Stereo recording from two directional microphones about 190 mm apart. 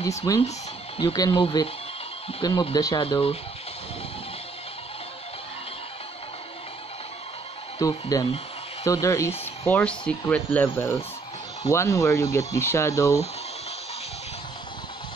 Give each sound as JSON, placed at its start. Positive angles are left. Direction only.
{"t": 0.0, "sound": "speech", "side_deg": 15}
{"t": 7.8, "sound": "speech", "side_deg": 20}